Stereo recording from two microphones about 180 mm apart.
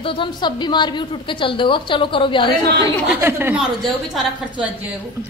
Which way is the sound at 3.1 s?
10° right (ahead or behind).